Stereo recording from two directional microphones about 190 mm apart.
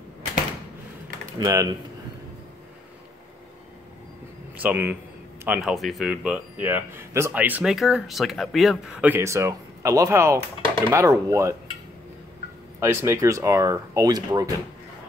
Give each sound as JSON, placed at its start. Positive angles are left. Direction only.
{"t": 1.4, "sound": "speech", "side_deg": -15}
{"t": 4.6, "sound": "speech", "side_deg": -10}
{"t": 12.8, "sound": "speech", "side_deg": -15}